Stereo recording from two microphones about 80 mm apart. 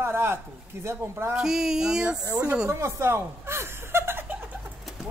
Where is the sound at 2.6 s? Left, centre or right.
Right.